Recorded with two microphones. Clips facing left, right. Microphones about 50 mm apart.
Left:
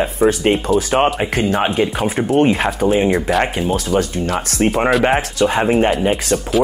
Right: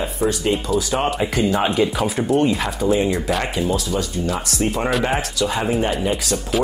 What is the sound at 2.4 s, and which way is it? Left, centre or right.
Speech, left.